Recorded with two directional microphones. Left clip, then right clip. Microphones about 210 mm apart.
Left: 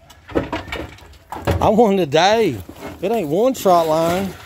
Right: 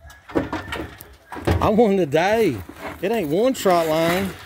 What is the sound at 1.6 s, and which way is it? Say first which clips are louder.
Speech: left 3 dB; centre (ahead or behind).